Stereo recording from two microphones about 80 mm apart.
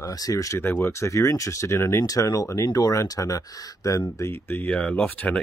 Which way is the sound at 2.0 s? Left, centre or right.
Left.